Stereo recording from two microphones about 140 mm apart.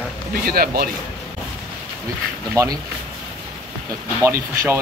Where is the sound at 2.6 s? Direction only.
25° right (ahead or behind).